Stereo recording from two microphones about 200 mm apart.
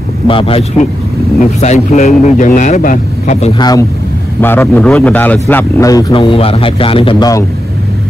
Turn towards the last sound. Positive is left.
turn(degrees=25)  # may be behind; listen again after turning